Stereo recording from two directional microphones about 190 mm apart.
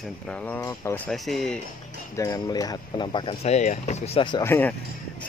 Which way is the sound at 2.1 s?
15° left (ahead or behind).